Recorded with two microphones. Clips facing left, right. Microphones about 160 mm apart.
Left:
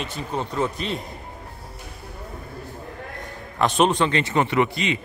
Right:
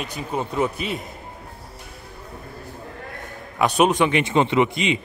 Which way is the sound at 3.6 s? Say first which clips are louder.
Right 1 dB; 5° right (ahead or behind).